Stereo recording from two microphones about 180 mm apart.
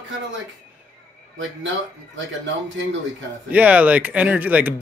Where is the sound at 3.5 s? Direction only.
10° right (ahead or behind).